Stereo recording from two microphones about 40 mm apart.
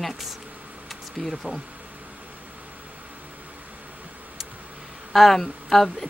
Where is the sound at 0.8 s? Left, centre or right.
Centre.